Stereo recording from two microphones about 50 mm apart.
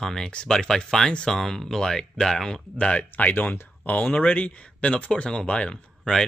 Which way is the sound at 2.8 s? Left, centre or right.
Left.